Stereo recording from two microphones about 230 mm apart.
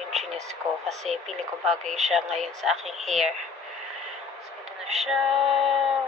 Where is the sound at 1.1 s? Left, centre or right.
Centre.